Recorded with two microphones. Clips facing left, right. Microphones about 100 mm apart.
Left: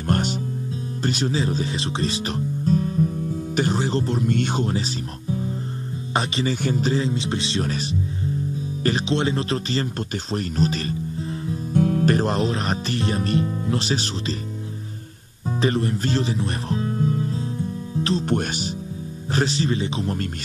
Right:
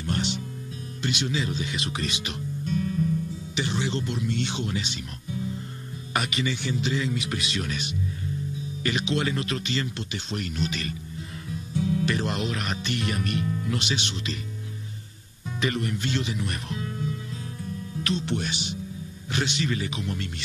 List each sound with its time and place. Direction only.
0.0 s music: 45° left (ahead or behind)
1.0 s speech: 40° left (ahead or behind)
6.5 s speech: 45° left (ahead or behind)
11.7 s speech: 55° left (ahead or behind); by 14.3 s 35° left (ahead or behind)
15.6 s speech: 35° left (ahead or behind)
17.6 s music: 35° left (ahead or behind)
19.3 s speech: 35° left (ahead or behind)